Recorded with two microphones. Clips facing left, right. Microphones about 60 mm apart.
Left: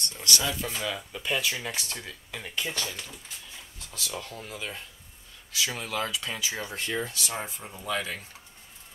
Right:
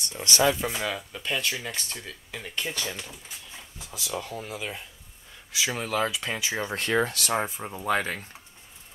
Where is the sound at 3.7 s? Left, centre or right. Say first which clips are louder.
Right 3 dB; centre.